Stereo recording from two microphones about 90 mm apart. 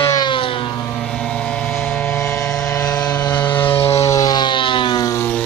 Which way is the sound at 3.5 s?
20° left (ahead or behind).